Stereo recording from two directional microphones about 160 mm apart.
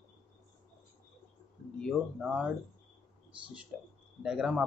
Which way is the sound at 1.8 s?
5° right (ahead or behind).